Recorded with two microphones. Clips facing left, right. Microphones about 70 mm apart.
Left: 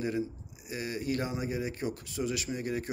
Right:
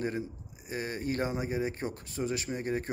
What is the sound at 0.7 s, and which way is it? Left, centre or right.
Speech, right.